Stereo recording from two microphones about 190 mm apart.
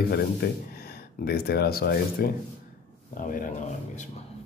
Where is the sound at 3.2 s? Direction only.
40° left (ahead or behind).